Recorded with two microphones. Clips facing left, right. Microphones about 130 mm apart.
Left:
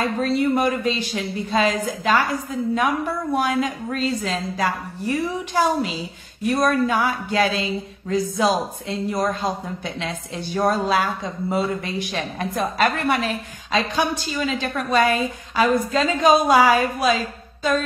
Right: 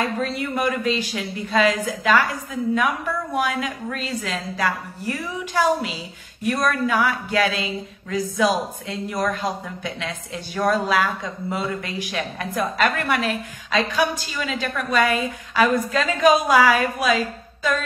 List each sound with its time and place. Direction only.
0.2 s a woman's voice: 30° left (ahead or behind)